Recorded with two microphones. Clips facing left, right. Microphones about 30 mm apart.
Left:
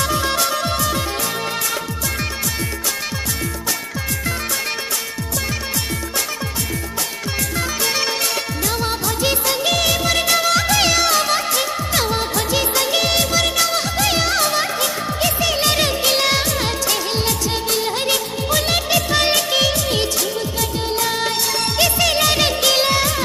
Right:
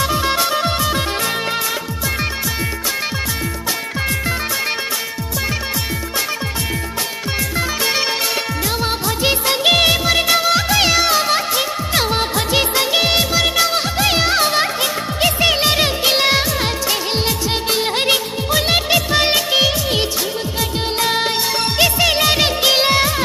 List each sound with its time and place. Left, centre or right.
0.0 s music: centre
7.5 s music: centre
10.0 s music of bollywood: centre
15.7 s music of bollywood: centre
18.1 s music of bollywood: right
21.0 s music: right